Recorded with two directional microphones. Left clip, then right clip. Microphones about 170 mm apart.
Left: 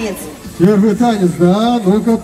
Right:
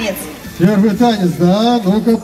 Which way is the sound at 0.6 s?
5° right (ahead or behind).